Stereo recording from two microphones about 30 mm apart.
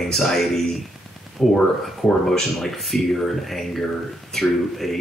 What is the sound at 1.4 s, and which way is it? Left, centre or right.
Speech, centre.